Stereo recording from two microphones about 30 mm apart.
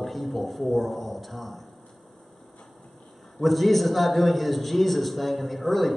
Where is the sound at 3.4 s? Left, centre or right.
Centre.